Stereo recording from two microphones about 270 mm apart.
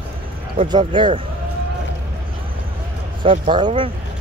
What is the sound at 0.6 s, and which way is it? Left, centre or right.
Speech, centre.